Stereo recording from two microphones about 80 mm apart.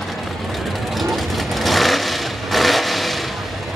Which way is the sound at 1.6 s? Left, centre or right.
Centre.